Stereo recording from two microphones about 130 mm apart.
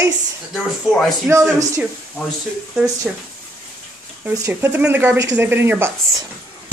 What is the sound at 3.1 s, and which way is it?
Speech, 10° right (ahead or behind).